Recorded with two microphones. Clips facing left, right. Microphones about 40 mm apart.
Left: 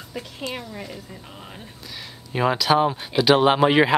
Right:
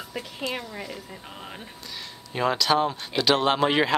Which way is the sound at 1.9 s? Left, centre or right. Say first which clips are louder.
Left 4 dB; centre.